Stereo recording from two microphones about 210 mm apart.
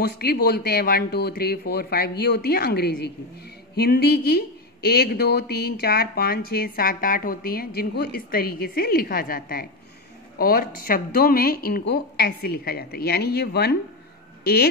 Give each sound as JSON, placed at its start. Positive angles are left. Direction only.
{"t": 0.2, "sound": "a woman's voice", "side_deg": 50}